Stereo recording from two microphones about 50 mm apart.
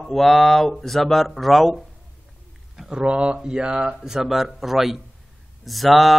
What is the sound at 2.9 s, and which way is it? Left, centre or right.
Speech, right.